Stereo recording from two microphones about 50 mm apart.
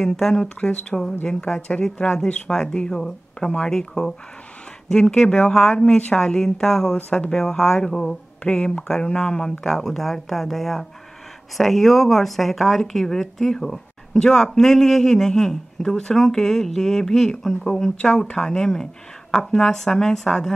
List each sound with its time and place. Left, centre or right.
0.0 s speech: centre